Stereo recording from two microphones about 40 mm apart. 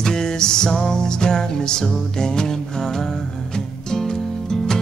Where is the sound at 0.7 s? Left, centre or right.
Centre.